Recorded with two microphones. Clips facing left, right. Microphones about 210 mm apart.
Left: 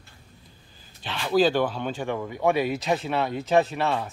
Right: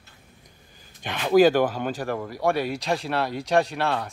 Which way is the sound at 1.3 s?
10° right (ahead or behind).